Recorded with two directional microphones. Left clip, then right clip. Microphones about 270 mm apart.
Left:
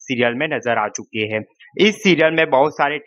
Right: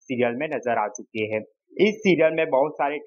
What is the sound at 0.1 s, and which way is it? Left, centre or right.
Speech, left.